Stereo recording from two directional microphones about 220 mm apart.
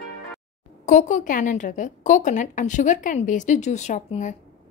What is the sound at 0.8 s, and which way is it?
A woman's voice, 35° left (ahead or behind).